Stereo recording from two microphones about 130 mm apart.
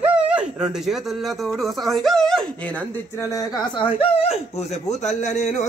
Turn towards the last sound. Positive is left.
turn(degrees=65)  # may be behind; listen again after turning